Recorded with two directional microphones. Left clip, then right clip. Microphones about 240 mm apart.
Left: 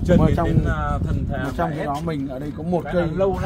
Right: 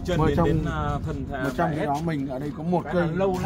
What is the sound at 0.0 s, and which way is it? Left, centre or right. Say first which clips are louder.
Speech: left 4 dB; left.